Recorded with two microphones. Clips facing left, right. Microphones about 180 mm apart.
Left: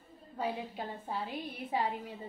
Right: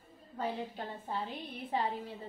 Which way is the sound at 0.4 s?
10° left (ahead or behind).